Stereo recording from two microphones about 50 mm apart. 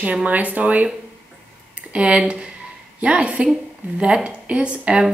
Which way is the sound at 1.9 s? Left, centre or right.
Right.